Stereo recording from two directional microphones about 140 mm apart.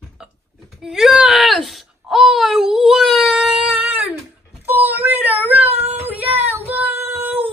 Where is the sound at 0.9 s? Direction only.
5° right (ahead or behind).